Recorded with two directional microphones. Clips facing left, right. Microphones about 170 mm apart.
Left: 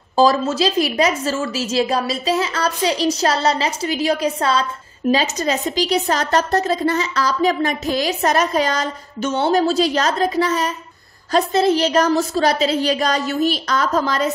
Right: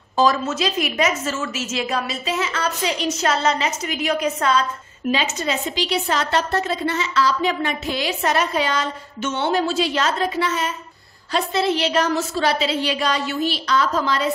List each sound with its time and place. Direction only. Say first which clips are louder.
0.1 s a woman's voice: left 4 dB; 30° left (ahead or behind)